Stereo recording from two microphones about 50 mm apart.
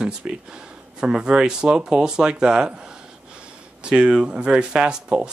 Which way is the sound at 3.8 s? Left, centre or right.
Centre.